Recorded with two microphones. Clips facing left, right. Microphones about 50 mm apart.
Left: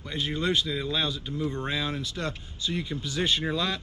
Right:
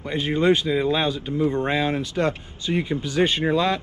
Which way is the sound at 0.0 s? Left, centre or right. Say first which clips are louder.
Right 8 dB; right.